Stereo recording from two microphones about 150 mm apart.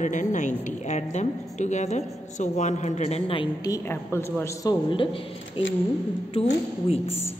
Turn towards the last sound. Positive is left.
turn(degrees=40)  # may be behind; listen again after turning